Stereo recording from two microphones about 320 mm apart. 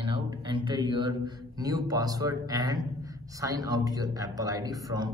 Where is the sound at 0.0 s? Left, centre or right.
Centre.